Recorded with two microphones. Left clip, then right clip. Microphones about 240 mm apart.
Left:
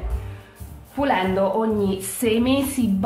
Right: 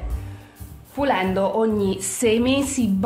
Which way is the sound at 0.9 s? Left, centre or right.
Right.